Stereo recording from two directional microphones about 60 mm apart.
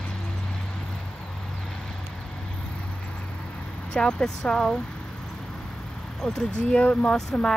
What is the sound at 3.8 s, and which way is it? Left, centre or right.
Speech, centre.